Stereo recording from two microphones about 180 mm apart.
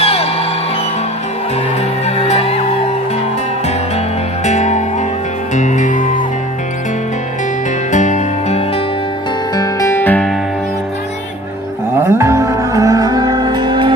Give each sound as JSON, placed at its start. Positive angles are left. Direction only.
{"t": 0.0, "sound": "music", "side_deg": 35}
{"t": 2.0, "sound": "music", "side_deg": 35}
{"t": 4.5, "sound": "music", "side_deg": 40}
{"t": 7.9, "sound": "music", "side_deg": 45}
{"t": 9.6, "sound": "music", "side_deg": 15}
{"t": 12.0, "sound": "music", "side_deg": -15}